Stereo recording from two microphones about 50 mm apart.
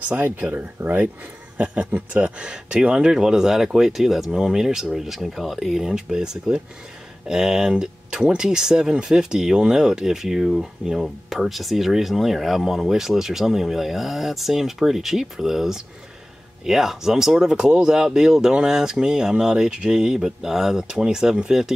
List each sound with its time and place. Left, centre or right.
0.2 s speech: right
2.2 s speech: centre